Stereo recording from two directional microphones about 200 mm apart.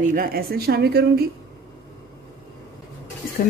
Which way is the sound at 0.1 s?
45° right (ahead or behind).